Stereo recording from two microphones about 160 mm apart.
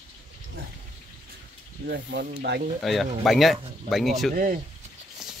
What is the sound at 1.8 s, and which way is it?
Speech, 85° right.